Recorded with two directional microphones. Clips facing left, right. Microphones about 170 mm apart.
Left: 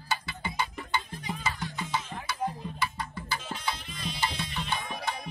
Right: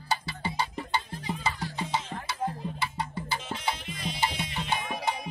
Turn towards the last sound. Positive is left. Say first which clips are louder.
# right 3 dB
turn(degrees=-25)  # may be behind; listen again after turning